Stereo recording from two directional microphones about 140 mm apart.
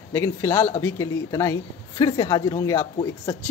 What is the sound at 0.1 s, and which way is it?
Speech, 20° left (ahead or behind).